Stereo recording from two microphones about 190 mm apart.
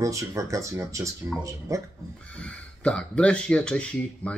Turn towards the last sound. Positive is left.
turn(degrees=5)  # may be behind; listen again after turning